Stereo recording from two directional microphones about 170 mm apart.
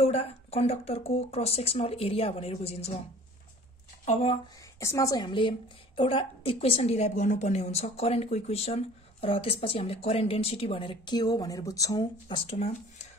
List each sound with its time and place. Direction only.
0.0 s a woman's voice: 35° left (ahead or behind)
4.0 s speech: 40° left (ahead or behind)
4.7 s a woman's voice: 20° left (ahead or behind); by 13.1 s 40° left (ahead or behind)